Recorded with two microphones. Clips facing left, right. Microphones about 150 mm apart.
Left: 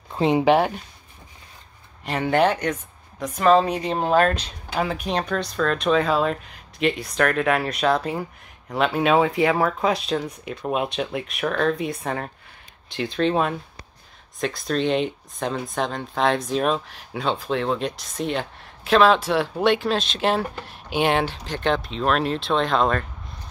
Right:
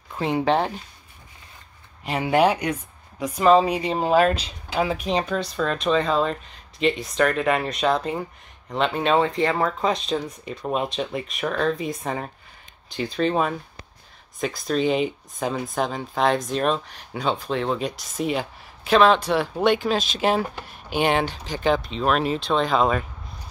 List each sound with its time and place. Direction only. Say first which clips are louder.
0.1 s speech: left 4 dB; 20° left (ahead or behind)
2.0 s speech: even; 5° right (ahead or behind)